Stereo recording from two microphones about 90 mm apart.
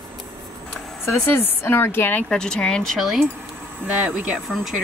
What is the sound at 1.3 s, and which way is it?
Speech, 20° left (ahead or behind).